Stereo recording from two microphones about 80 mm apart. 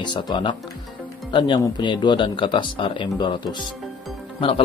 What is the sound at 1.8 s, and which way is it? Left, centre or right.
Speech, left.